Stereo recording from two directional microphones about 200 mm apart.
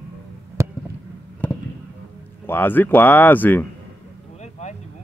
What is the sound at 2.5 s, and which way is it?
Speech, 10° left (ahead or behind).